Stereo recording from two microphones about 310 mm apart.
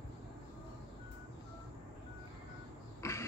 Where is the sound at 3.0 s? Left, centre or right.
Centre.